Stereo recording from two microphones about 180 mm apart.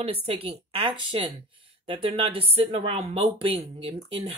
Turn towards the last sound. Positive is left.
turn(degrees=-30)  # may be behind; listen again after turning